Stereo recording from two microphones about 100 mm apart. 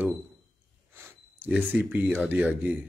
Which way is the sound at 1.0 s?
20° right (ahead or behind).